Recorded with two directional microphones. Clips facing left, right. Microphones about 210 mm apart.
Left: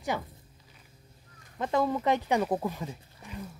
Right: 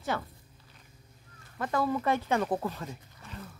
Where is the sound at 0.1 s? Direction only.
15° left (ahead or behind).